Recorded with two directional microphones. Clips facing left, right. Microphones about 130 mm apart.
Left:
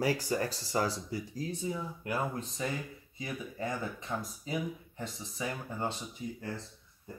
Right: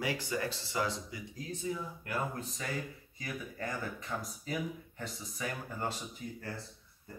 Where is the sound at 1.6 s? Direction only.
20° left (ahead or behind).